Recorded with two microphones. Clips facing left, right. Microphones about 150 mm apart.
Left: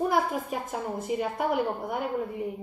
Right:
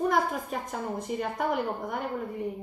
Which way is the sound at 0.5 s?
5° left (ahead or behind).